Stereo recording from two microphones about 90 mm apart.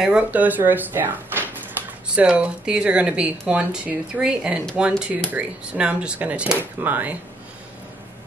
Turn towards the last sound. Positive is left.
turn(degrees=-20)  # may be behind; listen again after turning